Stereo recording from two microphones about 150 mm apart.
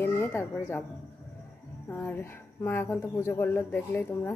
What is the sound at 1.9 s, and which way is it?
Speech, 15° left (ahead or behind).